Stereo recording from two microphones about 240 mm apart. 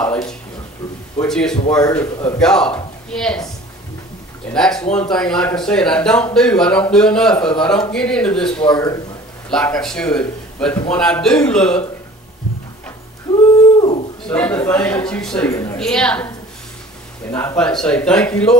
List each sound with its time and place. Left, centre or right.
0.0 s speech: centre
1.8 s a man's voice: centre
4.5 s speech: centre
8.6 s a man's voice: centre
9.5 s speech: centre
13.7 s dog: left
14.2 s speech: centre
17.3 s speech: centre